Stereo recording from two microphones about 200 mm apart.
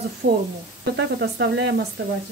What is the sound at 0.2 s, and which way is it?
Speech, 50° right (ahead or behind).